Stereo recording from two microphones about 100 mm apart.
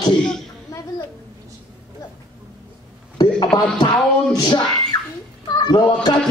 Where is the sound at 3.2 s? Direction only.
45° left (ahead or behind).